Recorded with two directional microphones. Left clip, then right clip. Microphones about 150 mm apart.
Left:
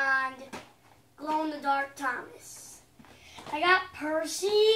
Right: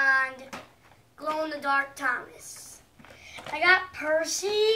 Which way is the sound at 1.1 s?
20° right (ahead or behind).